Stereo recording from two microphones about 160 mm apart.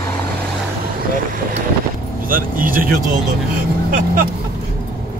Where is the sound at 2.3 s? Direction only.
60° right (ahead or behind).